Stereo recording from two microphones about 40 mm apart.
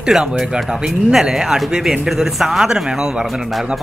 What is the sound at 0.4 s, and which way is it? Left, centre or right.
Speech, centre.